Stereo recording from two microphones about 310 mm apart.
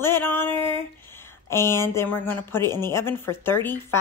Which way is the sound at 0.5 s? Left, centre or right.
Centre.